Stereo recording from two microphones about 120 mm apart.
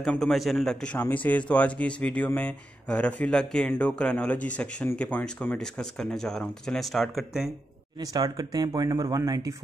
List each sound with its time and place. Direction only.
0.0 s speech: 5° left (ahead or behind)
8.0 s speech: 30° right (ahead or behind)